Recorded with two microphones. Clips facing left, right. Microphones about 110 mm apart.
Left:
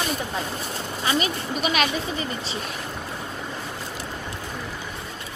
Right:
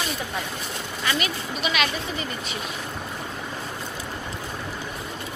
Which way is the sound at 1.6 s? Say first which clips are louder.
Left 2 dB; 40° left (ahead or behind).